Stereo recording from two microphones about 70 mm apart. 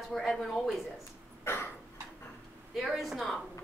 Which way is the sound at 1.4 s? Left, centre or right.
Left.